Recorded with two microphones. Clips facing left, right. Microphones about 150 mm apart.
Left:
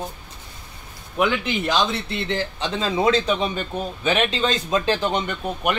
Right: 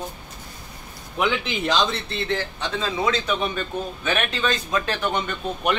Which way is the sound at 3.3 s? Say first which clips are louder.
Left 2 dB; 20° left (ahead or behind).